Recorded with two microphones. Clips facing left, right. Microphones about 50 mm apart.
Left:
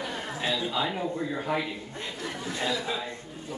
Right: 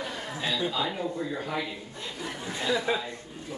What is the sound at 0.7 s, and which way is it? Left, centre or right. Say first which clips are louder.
Speech: left 1 dB; centre.